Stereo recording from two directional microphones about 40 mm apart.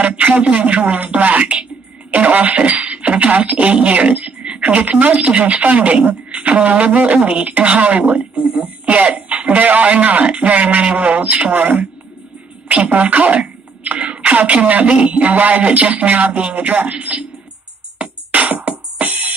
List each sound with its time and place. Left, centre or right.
0.0 s a sound: right
1.0 s speech: right
12.6 s speech: right
18.3 s music: right